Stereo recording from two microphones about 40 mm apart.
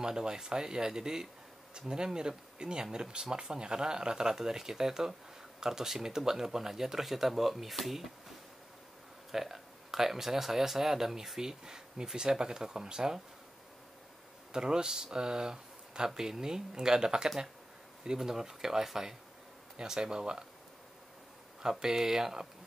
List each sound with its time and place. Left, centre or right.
0.0 s speech: centre
9.3 s speech: centre
14.5 s speech: centre
21.6 s speech: centre